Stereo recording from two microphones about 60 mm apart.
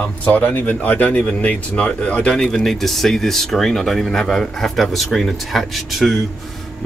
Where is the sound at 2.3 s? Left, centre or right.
Centre.